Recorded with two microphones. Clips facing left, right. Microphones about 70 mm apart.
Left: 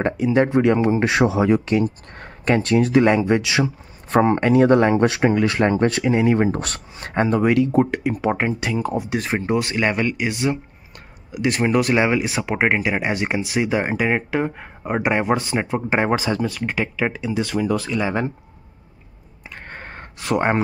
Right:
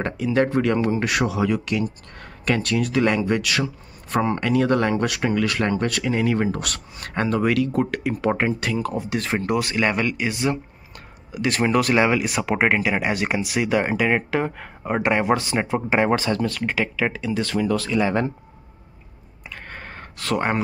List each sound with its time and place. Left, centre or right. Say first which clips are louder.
0.0 s speech: left 3 dB; left
9.5 s speech: left 1 dB; left; by 16.0 s centre
16.0 s speech: even; centre
19.5 s a sound: left 1 dB; left
20.2 s speech: left 3 dB; centre